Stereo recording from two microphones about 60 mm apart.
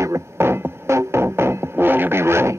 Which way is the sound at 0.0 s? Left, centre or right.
Right.